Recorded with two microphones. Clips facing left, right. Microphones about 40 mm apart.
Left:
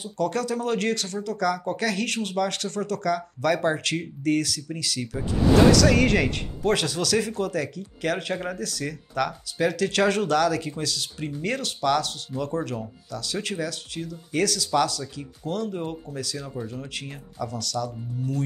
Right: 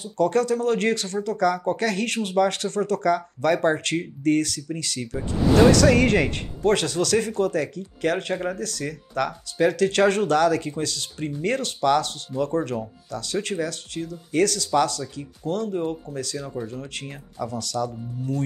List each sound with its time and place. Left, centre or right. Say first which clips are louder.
0.2 s speech: right 5 dB; centre
0.5 s speech: right 4 dB; centre
0.7 s speech: right 3 dB; centre
2.2 s speech: right 5 dB; centre
3.6 s speech: right 3 dB; centre
12.3 s speech: right 4 dB; centre
17.4 s speech: right 2 dB; centre